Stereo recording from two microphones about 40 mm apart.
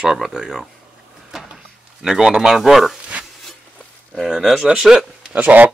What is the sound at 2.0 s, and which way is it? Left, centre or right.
Speech, centre.